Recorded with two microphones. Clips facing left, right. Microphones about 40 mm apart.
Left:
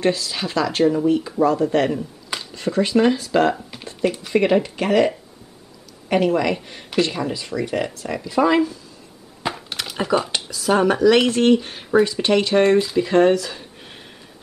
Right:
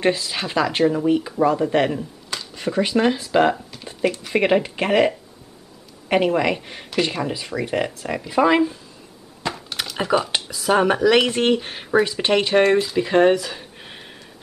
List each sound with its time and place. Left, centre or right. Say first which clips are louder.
0.0 s speech: even; right
9.4 s a sound: left 1 dB; centre
9.9 s speech: even; centre
12.6 s speech: left 1 dB; centre